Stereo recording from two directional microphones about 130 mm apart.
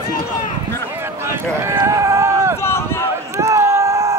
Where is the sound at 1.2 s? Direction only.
20° right (ahead or behind).